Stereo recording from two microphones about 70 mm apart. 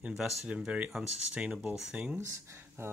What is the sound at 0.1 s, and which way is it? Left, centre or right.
Speech, centre.